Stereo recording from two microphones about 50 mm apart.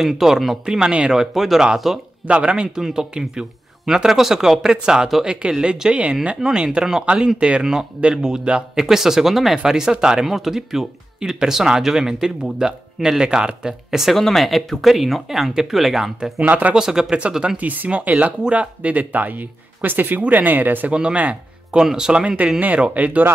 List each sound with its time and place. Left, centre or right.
0.0 s speech: centre
0.7 s speech: centre
2.2 s speech: centre
14.1 s speech: centre
16.4 s speech: right
16.7 s speech: centre
17.6 s speech: right
20.9 s speech: centre
22.6 s speech: right